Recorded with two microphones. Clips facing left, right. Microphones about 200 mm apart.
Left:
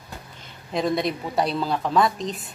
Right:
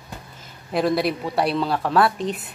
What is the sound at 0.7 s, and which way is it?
Speech, 5° right (ahead or behind).